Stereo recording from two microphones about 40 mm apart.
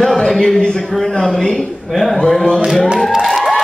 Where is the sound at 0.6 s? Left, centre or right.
Left.